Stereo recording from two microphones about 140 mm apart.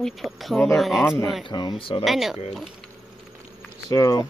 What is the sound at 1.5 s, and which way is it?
Speech, 35° left (ahead or behind).